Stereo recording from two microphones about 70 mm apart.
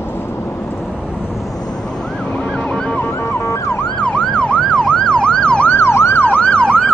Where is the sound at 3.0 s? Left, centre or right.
Left.